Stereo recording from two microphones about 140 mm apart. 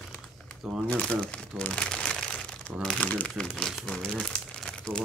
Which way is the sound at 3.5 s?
Centre (ahead or behind).